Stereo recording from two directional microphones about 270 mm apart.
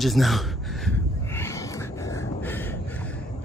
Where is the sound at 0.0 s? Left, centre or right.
Centre.